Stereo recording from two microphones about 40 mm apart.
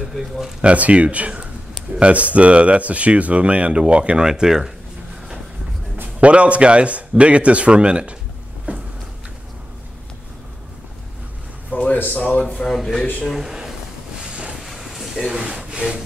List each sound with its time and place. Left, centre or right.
0.1 s speech: centre
0.6 s speech: right
4.2 s speech: centre
6.2 s speech: right
8.7 s a sound: right
11.7 s a sound: left
12.1 s speech: left
12.6 s speech: centre
13.4 s a sound: centre
14.3 s boat: right
14.6 s vehicle: centre
15.1 s wood: centre